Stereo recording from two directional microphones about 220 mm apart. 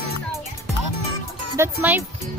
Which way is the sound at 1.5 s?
10° right (ahead or behind).